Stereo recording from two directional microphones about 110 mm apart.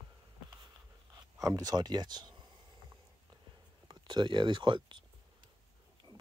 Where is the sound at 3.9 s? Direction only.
40° right (ahead or behind).